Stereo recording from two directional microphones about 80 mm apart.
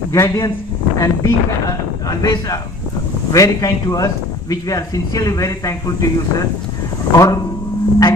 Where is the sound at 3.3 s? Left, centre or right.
Left.